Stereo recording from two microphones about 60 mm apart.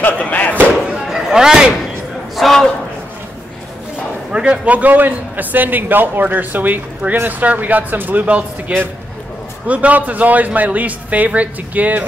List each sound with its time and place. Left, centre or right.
0.0 s slam: left
0.8 s a sound: centre
2.3 s a man's voice: centre
4.3 s a man's voice: centre